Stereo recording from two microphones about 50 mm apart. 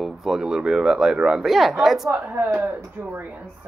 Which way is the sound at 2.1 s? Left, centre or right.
Right.